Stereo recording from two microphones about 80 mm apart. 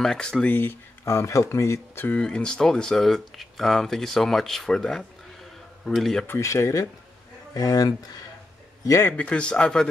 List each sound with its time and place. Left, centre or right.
0.0 s speech: centre
0.5 s speech: left
1.0 s speech: left
2.0 s speech: centre
6.4 s speech: left
8.8 s a man's voice: left
9.1 s speech: centre